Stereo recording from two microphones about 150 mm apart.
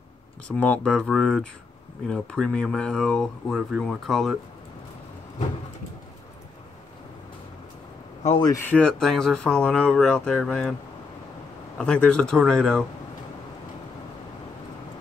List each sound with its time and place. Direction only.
0.5 s speech: 10° left (ahead or behind)
8.4 s speech: 25° left (ahead or behind)
8.6 s speech: 5° left (ahead or behind)
11.8 s speech: 10° left (ahead or behind)